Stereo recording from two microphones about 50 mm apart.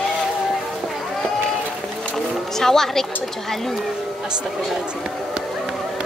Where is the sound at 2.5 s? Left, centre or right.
Centre.